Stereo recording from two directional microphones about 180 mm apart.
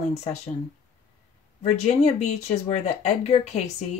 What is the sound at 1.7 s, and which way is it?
Speech, 40° left (ahead or behind).